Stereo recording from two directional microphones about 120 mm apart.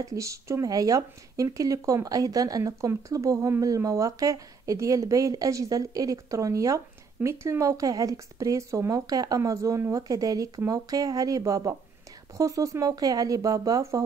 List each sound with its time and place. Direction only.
0.0 s speech: 25° right (ahead or behind)